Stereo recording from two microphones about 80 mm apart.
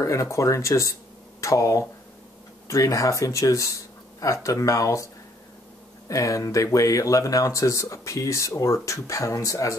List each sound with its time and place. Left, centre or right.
0.0 s speech: left
6.0 s speech: left